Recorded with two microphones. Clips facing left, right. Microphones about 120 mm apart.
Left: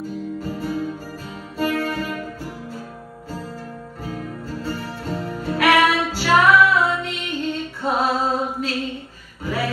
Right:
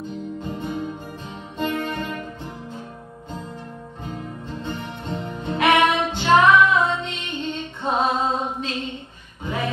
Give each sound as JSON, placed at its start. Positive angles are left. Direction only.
{"t": 0.0, "sound": "music", "side_deg": 5}
{"t": 0.5, "sound": "music", "side_deg": -20}
{"t": 3.3, "sound": "music", "side_deg": -20}
{"t": 8.5, "sound": "mantra", "side_deg": -20}
{"t": 9.4, "sound": "a sound", "side_deg": -20}